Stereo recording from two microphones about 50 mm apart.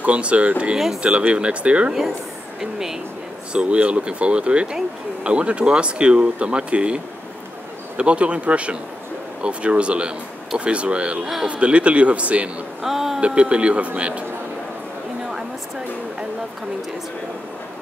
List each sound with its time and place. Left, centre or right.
0.0 s speech: right
2.6 s speech: centre
3.5 s speech: right
8.0 s speech: right
12.8 s a sound: centre
13.2 s speech: right